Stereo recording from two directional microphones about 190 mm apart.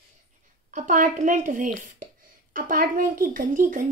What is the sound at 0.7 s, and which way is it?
A woman's voice, 40° right (ahead or behind).